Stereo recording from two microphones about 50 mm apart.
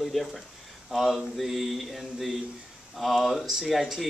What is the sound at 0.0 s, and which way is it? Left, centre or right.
Speech, centre.